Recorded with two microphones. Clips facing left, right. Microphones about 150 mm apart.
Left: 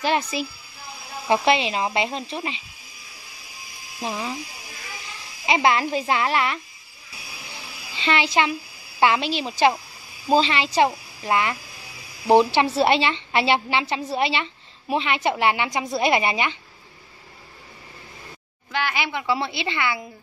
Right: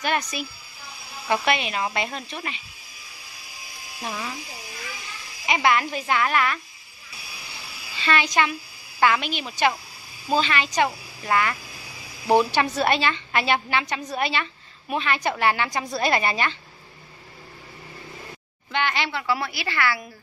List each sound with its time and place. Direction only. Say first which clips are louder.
0.0 s a woman's voice: left 3 dB; 30° left (ahead or behind)
4.0 s a woman's voice: left 3 dB; 25° left (ahead or behind)
5.5 s a woman's voice: left 2 dB; 25° left (ahead or behind)
7.9 s a child's voice: left 1 dB; 25° left (ahead or behind)
18.7 s a woman's voice: even; 5° left (ahead or behind); by 20.1 s 20° left (ahead or behind)